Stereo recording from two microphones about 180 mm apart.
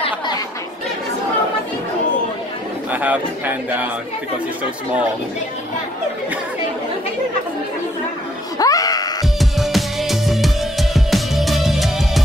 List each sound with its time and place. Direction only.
2.9 s a man's voice: 10° right (ahead or behind)
8.5 s screaming: 20° left (ahead or behind)
9.4 s music: centre (ahead or behind)